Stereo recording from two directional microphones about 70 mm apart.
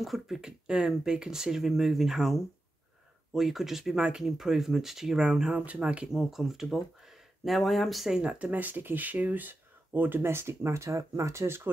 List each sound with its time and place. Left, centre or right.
0.0 s speech: centre
8.2 s speech: centre; by 11.7 s right